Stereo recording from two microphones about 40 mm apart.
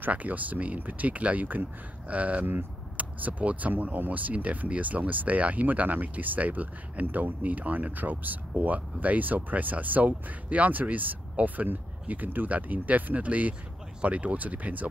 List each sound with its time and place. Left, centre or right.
0.1 s speech: right